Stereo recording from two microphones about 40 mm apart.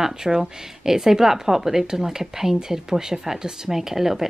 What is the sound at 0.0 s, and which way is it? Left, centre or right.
Speech, centre.